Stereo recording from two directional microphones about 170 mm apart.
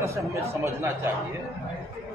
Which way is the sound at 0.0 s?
15° right (ahead or behind).